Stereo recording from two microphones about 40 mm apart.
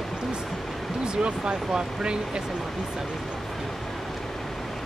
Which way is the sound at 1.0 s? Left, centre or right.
Right.